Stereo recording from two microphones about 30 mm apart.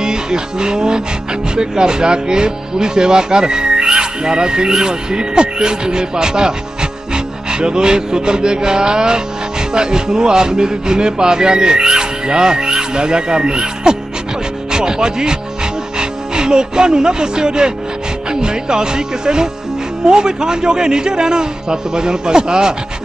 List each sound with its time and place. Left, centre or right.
0.0 s music: right
14.7 s speech: right
18.3 s music: right